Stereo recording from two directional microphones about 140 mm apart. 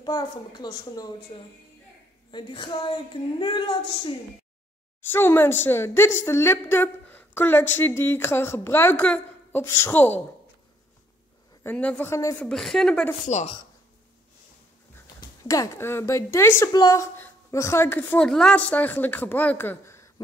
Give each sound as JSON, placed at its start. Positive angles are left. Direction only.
{"t": 0.0, "sound": "a woman's voice", "side_deg": 30}
{"t": 5.0, "sound": "a woman's voice", "side_deg": 15}
{"t": 11.6, "sound": "a woman's voice", "side_deg": 10}
{"t": 12.4, "sound": "speech", "side_deg": 5}
{"t": 15.1, "sound": "a woman's voice", "side_deg": 25}